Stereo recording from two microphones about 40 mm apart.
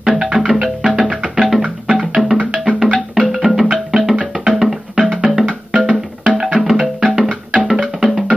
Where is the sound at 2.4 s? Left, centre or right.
Right.